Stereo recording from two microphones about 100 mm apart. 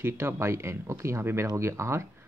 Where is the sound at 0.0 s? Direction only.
25° right (ahead or behind).